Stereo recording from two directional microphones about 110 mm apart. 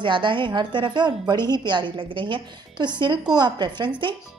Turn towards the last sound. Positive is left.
turn(degrees=-40)  # may be behind; listen again after turning